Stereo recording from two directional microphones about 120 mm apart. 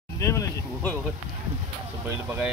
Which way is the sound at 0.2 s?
25° left (ahead or behind).